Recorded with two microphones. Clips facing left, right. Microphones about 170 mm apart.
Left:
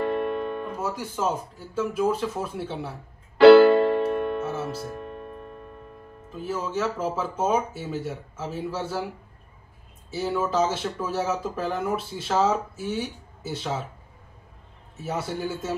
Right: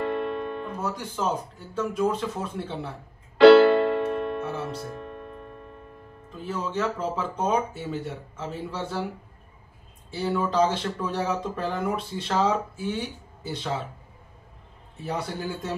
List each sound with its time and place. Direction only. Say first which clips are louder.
0.7 s speech: left 1 dB; 5° left (ahead or behind)
3.4 s music: left 1 dB; 30° left (ahead or behind)
4.5 s music: left 1 dB; 5° left (ahead or behind)
4.9 s music: left 1 dB; 15° left (ahead or behind)
6.3 s speech: left 1 dB; 5° left (ahead or behind)
10.1 s speech: even; 5° left (ahead or behind)
15.0 s speech: left 1 dB; 5° left (ahead or behind)